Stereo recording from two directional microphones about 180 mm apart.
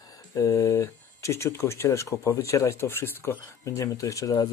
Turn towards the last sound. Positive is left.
turn(degrees=20)  # may be behind; listen again after turning